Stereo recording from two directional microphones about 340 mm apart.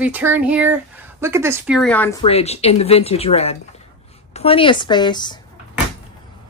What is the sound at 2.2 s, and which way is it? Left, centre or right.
Speech, centre.